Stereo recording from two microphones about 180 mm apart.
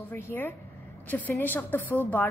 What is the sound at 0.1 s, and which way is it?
A woman's voice, 10° left (ahead or behind).